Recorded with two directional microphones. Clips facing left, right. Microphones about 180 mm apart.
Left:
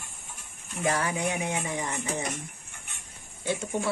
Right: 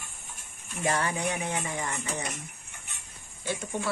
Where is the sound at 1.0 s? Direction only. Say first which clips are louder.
Left 1 dB; 15° left (ahead or behind).